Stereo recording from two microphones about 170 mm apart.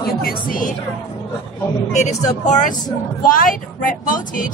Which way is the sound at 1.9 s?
45° left (ahead or behind).